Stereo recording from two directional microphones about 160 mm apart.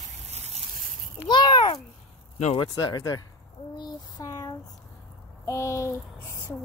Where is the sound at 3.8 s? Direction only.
25° left (ahead or behind).